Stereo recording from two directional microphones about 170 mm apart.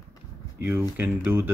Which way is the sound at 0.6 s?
15° right (ahead or behind).